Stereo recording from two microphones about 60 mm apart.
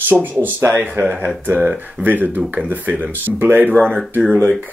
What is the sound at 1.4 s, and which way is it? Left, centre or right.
Speech, right.